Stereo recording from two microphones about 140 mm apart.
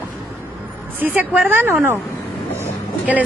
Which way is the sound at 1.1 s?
10° right (ahead or behind).